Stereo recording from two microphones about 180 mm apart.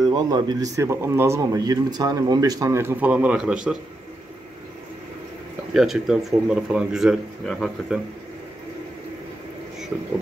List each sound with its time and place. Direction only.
0.1 s speech: 25° right (ahead or behind); by 3.7 s 5° right (ahead or behind)
5.7 s speech: centre (ahead or behind)